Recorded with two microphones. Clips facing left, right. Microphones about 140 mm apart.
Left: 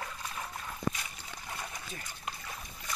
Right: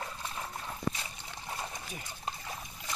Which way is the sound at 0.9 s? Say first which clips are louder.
Right 1 dB; 25° right (ahead or behind).